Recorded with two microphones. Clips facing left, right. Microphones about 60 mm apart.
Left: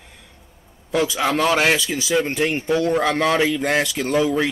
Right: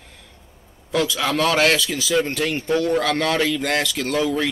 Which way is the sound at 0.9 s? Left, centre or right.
Centre.